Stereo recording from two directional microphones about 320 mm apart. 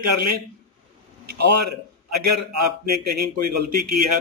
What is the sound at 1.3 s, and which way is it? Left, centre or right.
A man's voice, right.